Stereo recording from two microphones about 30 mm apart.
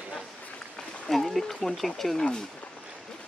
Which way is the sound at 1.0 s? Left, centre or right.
Centre.